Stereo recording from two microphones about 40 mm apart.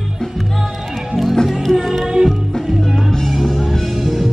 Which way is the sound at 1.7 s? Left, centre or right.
Centre.